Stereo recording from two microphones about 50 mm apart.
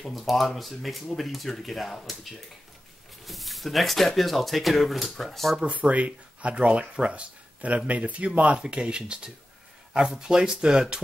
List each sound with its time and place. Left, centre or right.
0.0 s speech: centre
5.8 s speech: right